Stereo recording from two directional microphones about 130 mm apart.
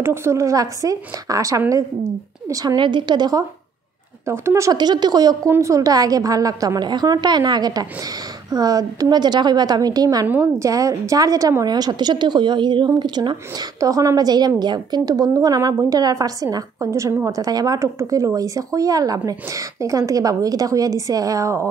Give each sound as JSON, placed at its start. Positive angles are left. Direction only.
{"t": 0.0, "sound": "a woman's voice", "side_deg": -20}